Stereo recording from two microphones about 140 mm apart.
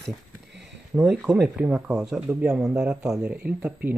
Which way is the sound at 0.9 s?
10° right (ahead or behind).